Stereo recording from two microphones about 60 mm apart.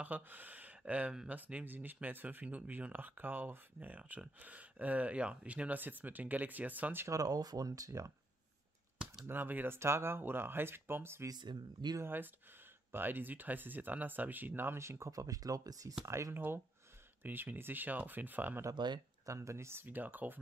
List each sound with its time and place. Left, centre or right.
0.0 s speech: right
7.1 s speech: right
9.2 s speech: right
9.8 s speech: right
15.0 s speech: right
16.1 s speech: right
16.3 s speech: right
19.2 s speech: right